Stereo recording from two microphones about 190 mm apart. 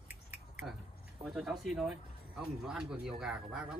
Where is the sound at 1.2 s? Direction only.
Centre (ahead or behind).